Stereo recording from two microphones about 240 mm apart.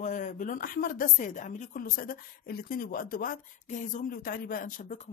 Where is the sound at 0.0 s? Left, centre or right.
Left.